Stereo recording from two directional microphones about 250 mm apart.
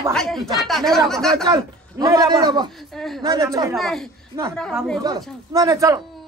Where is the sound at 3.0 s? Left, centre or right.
Centre.